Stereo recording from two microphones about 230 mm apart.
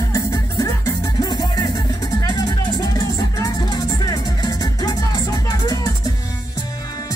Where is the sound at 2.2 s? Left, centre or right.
Centre.